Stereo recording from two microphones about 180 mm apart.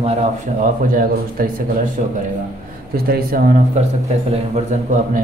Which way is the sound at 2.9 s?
55° right (ahead or behind).